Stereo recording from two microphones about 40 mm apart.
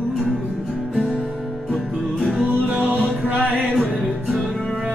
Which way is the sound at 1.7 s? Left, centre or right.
Centre.